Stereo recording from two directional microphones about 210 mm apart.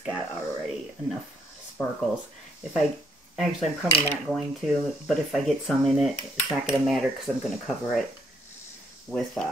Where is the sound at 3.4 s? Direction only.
Centre (ahead or behind).